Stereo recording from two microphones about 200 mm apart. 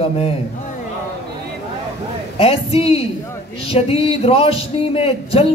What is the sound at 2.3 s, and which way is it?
Speech, 30° left (ahead or behind).